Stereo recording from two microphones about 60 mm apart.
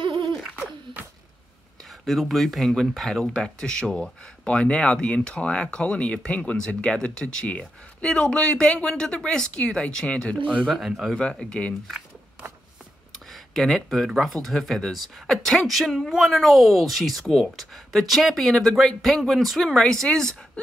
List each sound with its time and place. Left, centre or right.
1.9 s speech: centre
3.3 s speech: centre
3.8 s speech: centre
4.5 s speech: centre
10.7 s speech: centre
13.3 s speech: centre